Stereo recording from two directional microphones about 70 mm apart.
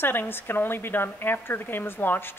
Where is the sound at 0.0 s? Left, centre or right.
Left.